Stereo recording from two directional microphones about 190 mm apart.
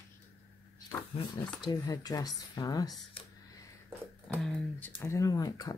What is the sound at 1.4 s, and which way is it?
Speech, 20° left (ahead or behind).